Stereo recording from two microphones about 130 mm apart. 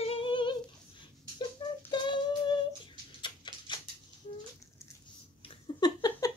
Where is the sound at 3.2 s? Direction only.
35° left (ahead or behind).